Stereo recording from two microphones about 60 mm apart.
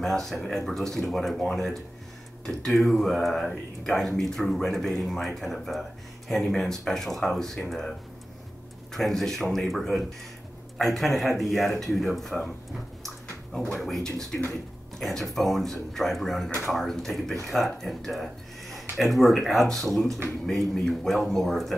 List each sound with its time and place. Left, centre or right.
0.0 s speech: centre
8.9 s speech: centre
13.7 s speech: centre